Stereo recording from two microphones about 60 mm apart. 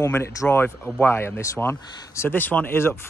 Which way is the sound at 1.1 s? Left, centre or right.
Left.